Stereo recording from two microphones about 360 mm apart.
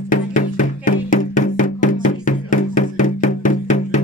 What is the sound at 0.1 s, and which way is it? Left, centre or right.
Music, left.